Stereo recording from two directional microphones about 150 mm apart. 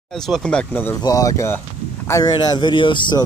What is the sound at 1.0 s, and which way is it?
Speech, 25° left (ahead or behind).